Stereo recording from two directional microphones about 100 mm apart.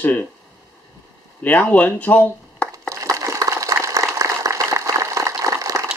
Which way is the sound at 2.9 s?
30° right (ahead or behind).